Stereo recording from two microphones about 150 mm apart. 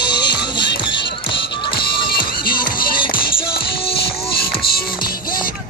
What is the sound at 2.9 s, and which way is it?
Music, 75° left (ahead or behind).